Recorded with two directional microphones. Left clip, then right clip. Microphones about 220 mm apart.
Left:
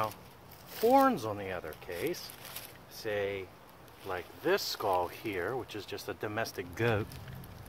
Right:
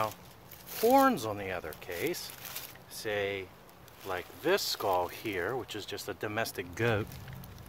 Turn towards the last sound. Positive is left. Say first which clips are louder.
# right 1 dB
turn(degrees=-15)  # may be behind; listen again after turning